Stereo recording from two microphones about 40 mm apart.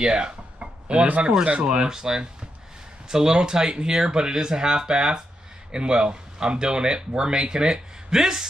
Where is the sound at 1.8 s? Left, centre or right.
Centre.